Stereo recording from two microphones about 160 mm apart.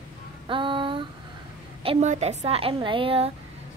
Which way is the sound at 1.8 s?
45° right (ahead or behind).